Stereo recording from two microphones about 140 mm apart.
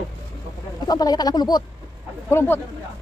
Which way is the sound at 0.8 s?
30° left (ahead or behind).